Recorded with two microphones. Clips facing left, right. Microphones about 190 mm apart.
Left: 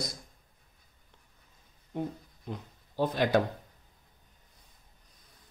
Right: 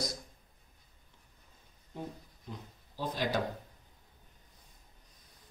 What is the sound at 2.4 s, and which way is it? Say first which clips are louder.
Speech: left 6 dB; 60° left (ahead or behind).